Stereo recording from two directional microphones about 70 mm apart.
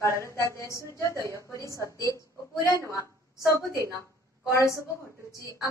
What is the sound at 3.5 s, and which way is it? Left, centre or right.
Speech, right.